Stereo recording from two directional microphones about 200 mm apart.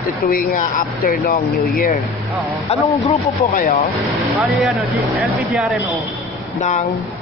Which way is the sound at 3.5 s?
45° left (ahead or behind).